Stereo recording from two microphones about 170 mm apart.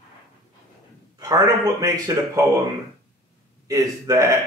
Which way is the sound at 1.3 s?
20° right (ahead or behind).